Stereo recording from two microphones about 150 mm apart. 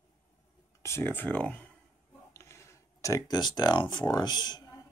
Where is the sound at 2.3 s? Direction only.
20° left (ahead or behind).